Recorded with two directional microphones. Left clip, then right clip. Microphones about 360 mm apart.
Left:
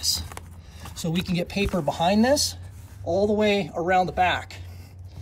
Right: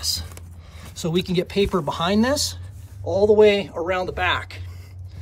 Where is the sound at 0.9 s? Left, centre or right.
Centre.